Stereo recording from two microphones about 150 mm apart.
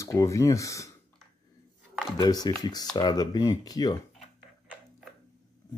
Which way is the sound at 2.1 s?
25° left (ahead or behind).